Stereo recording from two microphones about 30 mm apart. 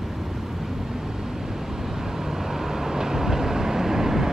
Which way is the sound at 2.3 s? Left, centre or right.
Centre.